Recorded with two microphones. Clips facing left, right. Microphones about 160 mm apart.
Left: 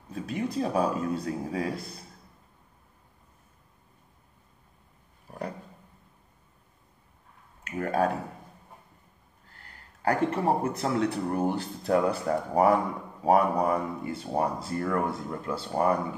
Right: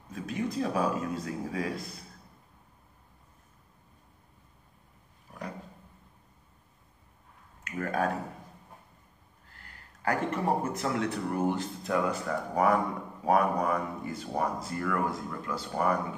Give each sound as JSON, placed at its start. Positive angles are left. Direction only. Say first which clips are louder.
{"t": 0.1, "sound": "a man's voice", "louder": "left 2 dB", "side_deg": 30}
{"t": 7.6, "sound": "a sound", "louder": "left 4 dB", "side_deg": 30}
{"t": 9.6, "sound": "a man's voice", "louder": "left 2 dB", "side_deg": 35}